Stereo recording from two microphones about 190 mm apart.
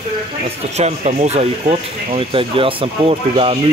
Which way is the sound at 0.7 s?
35° right (ahead or behind).